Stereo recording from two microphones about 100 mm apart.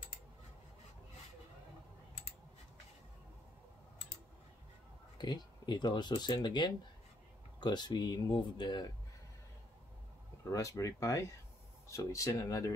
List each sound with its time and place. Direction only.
5.1 s speech: 45° left (ahead or behind)
10.5 s speech: 35° left (ahead or behind)